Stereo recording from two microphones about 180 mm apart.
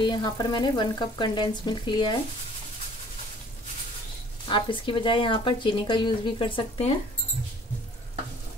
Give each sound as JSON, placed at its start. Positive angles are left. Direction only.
{"t": 0.0, "sound": "speech", "side_deg": 25}
{"t": 4.5, "sound": "speech", "side_deg": 25}